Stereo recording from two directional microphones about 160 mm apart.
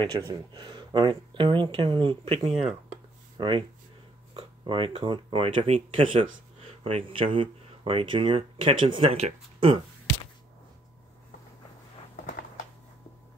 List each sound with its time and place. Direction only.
0.3 s speech: 25° right (ahead or behind)